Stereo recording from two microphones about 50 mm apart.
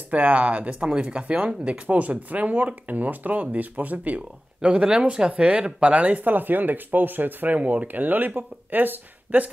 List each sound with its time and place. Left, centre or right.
0.1 s speech: right
4.6 s speech: centre; by 9.5 s right